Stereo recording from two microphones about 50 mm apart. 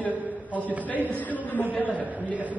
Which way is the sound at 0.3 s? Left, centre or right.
Left.